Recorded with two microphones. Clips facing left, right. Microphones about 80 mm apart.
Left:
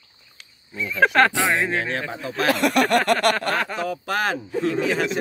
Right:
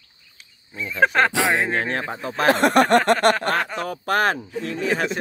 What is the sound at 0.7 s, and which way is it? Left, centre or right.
Speech, right.